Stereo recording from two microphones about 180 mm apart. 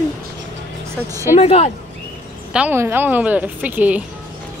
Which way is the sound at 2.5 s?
10° right (ahead or behind).